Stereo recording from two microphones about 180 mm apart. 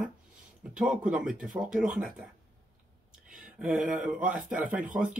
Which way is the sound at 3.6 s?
5° right (ahead or behind).